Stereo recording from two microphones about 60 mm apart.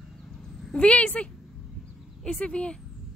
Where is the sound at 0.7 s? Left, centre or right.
Left.